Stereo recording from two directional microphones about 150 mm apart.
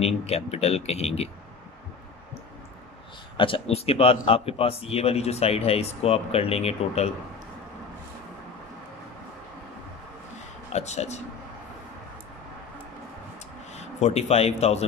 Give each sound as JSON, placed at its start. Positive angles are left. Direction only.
{"t": 0.0, "sound": "speech", "side_deg": 45}
{"t": 3.3, "sound": "a man's voice", "side_deg": 35}
{"t": 10.7, "sound": "speech", "side_deg": 45}
{"t": 13.7, "sound": "a man's voice", "side_deg": 45}